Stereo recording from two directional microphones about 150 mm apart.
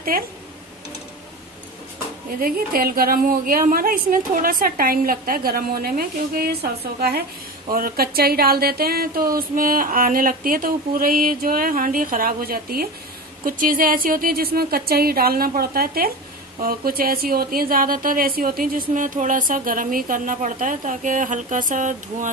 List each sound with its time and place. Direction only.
0.1 s speech: 75° right (ahead or behind)
2.4 s a woman's voice: 75° right (ahead or behind); by 22.3 s 60° right (ahead or behind)